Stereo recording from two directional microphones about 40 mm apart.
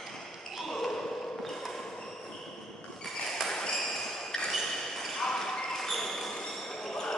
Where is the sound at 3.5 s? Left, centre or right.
Centre.